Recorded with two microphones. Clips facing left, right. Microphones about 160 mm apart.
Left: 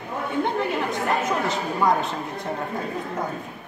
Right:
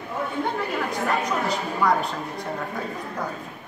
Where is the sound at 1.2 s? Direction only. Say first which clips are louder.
Left 1 dB; 25° left (ahead or behind).